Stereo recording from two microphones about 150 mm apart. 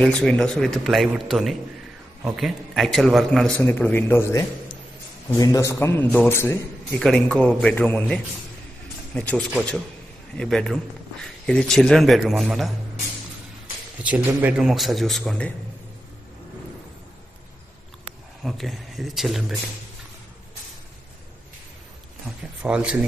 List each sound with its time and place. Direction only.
0.0 s a man's voice: 5° left (ahead or behind)
7.0 s a man's voice: 5° left (ahead or behind)
14.0 s a man's voice: 10° right (ahead or behind)
18.0 s speech: centre (ahead or behind)
22.6 s speech: 5° right (ahead or behind)